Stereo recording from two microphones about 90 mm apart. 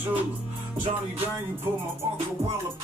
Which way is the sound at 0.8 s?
90° right.